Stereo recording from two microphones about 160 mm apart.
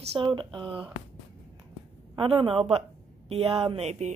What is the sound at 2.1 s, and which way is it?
Speech, 35° right (ahead or behind).